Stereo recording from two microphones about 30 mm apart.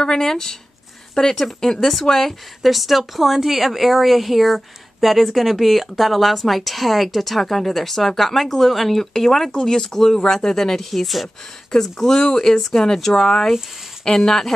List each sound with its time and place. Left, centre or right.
0.0 s speech: centre
2.0 s speech: centre
2.7 s speech: centre
9.5 s speech: centre